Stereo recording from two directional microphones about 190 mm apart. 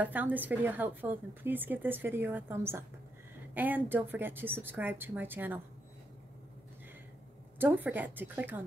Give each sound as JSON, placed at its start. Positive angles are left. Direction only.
{"t": 0.0, "sound": "speech", "side_deg": -10}
{"t": 7.5, "sound": "speech", "side_deg": -10}